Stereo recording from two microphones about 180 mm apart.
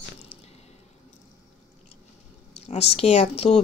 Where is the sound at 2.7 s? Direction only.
35° left (ahead or behind).